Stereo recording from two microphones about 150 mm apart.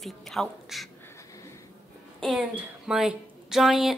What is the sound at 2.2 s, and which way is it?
A woman's voice, 5° right (ahead or behind).